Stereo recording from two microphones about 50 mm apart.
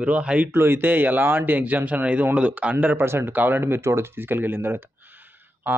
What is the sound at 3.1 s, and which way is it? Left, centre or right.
Speech, right.